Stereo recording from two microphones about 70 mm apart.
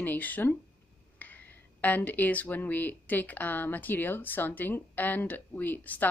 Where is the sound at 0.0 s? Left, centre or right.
Left.